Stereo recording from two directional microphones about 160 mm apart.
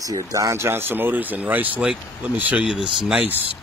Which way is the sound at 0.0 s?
20° right (ahead or behind).